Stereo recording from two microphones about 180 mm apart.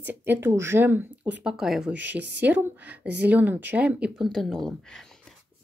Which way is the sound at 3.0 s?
70° right (ahead or behind).